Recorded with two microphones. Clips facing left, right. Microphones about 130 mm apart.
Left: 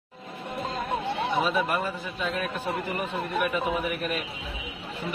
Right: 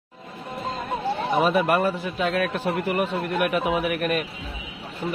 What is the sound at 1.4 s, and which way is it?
A man's voice, 65° right (ahead or behind).